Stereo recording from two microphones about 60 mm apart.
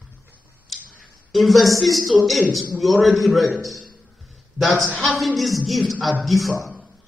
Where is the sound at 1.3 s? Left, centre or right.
Centre.